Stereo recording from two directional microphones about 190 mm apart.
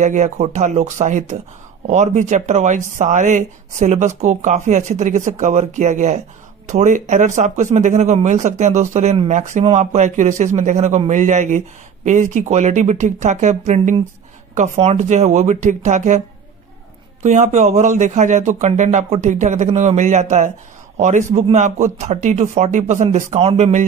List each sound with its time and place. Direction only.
0.0 s speech: 35° right (ahead or behind)
17.2 s speech: 40° right (ahead or behind)